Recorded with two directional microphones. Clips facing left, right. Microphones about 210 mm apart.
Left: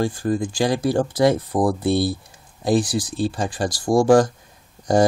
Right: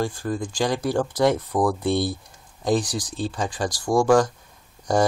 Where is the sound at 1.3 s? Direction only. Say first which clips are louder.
Left 2 dB; 30° left (ahead or behind).